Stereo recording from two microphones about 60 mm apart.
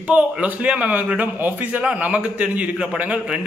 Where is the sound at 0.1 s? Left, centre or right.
Right.